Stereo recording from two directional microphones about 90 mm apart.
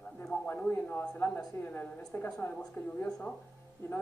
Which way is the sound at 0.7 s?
25° left (ahead or behind).